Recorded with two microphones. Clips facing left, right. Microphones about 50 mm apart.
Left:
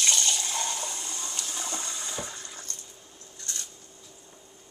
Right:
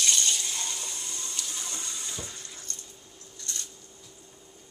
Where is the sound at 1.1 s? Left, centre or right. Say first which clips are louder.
Left 2 dB; left.